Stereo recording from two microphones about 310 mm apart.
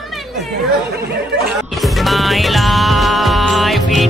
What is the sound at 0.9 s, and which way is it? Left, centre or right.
Speech, right.